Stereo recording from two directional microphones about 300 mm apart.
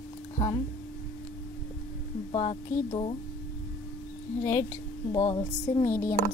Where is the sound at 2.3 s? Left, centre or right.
Centre.